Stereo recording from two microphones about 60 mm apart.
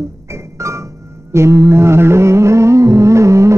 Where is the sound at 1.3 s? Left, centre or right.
Right.